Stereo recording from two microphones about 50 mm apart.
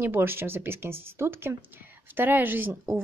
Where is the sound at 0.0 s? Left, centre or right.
Right.